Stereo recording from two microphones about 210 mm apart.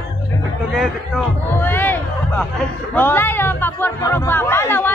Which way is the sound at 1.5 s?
10° left (ahead or behind).